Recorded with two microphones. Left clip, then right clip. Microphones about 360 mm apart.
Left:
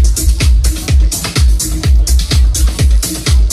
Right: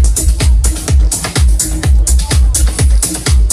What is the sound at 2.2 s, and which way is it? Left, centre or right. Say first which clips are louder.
Music: even; right.